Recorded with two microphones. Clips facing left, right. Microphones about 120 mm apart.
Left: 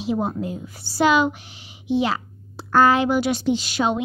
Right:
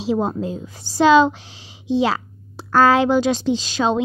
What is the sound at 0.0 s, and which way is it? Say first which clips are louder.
Speech: right 3 dB; 90° right.